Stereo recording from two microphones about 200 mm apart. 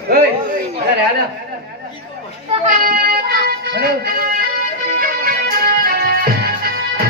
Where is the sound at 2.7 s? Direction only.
45° right (ahead or behind).